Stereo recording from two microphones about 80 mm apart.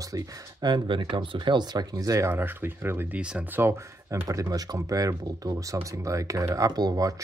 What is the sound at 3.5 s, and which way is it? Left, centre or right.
Speech, right.